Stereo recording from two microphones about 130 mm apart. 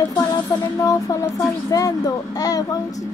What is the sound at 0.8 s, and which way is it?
A child's voice, 25° left (ahead or behind).